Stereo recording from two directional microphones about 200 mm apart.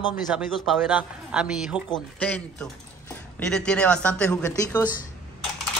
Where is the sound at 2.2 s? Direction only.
5° left (ahead or behind).